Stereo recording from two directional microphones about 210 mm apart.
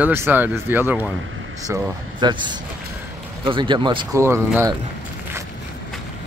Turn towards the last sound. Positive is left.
turn(degrees=-10)  # may be behind; listen again after turning